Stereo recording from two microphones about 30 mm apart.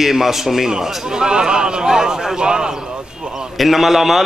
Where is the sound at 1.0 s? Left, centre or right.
Right.